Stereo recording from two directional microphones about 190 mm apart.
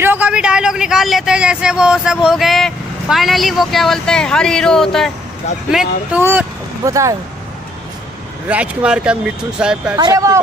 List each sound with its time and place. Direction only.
0.0 s speech: 10° right (ahead or behind)
6.2 s speech: 15° right (ahead or behind)
8.5 s speech: 5° right (ahead or behind)
9.9 s speech: 20° right (ahead or behind)